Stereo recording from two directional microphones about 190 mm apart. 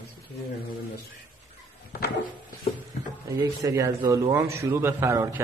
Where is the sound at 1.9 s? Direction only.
55° left (ahead or behind).